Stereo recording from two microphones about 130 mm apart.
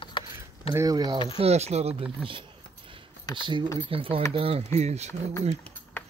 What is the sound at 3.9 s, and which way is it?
Speech, 45° right (ahead or behind).